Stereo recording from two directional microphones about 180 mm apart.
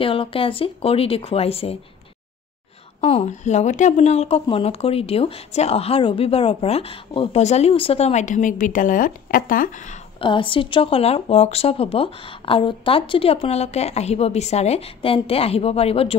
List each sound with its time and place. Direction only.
0.0 s a woman's voice: 30° left (ahead or behind)
3.0 s a woman's voice: 35° left (ahead or behind)
10.2 s a woman's voice: 30° left (ahead or behind)